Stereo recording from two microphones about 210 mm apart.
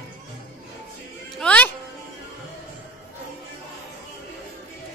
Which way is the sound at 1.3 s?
5° left (ahead or behind).